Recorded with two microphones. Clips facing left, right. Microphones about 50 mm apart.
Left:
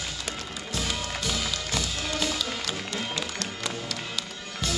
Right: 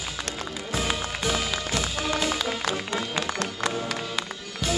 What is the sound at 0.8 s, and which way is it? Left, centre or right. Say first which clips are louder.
Music: right 3 dB; centre.